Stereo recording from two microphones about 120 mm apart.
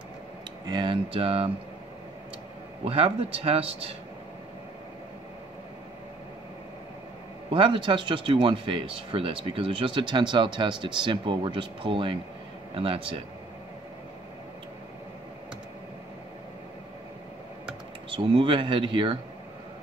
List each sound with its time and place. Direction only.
0.7 s speech: 40° right (ahead or behind)
2.8 s speech: 55° right (ahead or behind)
7.5 s speech: 45° right (ahead or behind)
18.1 s speech: 45° right (ahead or behind)